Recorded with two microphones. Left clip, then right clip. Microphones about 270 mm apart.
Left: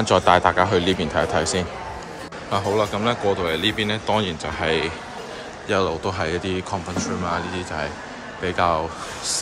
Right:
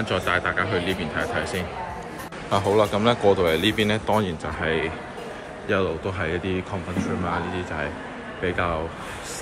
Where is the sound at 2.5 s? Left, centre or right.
Centre.